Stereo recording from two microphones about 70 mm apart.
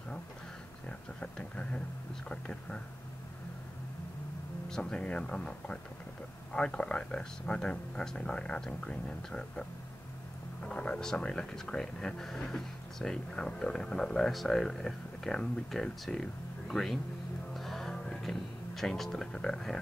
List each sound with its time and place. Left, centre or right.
0.8 s speech: centre
4.6 s speech: centre
17.6 s music: centre
19.3 s speech: centre